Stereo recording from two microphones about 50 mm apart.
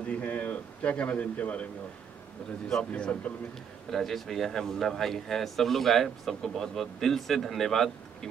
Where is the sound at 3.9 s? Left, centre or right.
Centre.